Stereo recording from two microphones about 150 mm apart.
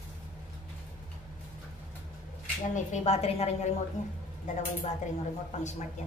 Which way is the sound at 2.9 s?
45° left (ahead or behind).